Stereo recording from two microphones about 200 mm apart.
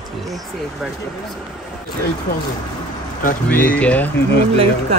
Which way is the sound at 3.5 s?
5° left (ahead or behind).